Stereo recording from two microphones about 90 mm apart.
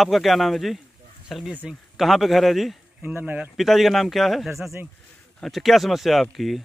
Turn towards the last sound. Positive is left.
turn(degrees=0)  # may be behind; listen again after turning